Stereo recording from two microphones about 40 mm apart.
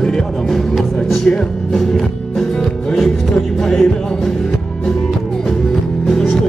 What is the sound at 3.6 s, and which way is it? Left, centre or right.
Music, centre.